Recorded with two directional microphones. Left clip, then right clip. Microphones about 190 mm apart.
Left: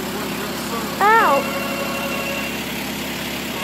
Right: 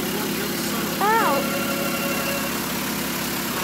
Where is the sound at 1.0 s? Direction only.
15° left (ahead or behind).